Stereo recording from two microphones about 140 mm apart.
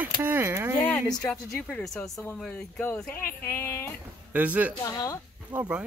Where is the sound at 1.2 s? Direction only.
10° left (ahead or behind).